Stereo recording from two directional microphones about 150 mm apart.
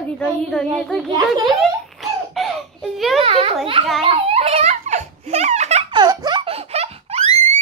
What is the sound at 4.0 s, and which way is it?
Giggle, 40° right (ahead or behind).